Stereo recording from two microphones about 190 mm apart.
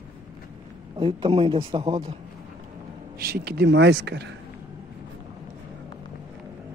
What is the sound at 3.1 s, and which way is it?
Speech, 50° right (ahead or behind).